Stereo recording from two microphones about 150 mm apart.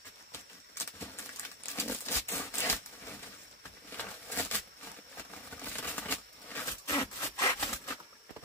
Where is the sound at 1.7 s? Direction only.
15° left (ahead or behind).